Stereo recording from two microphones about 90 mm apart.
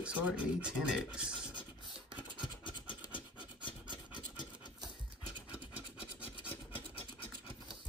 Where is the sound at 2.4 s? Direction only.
65° left (ahead or behind).